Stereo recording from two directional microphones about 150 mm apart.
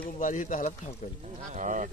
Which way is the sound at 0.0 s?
55° left (ahead or behind).